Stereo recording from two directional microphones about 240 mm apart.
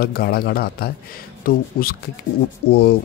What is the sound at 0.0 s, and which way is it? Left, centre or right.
Speech, left.